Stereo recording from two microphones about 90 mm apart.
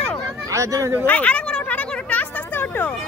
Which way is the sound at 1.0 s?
15° left (ahead or behind).